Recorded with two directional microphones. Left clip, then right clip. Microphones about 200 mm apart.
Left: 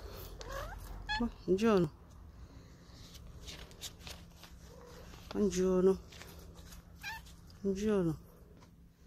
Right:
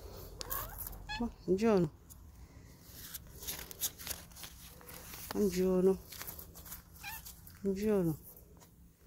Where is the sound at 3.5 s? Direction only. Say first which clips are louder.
Right 5 dB; 60° right (ahead or behind).